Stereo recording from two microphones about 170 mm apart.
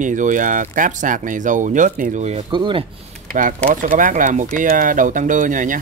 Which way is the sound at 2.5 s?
30° right (ahead or behind).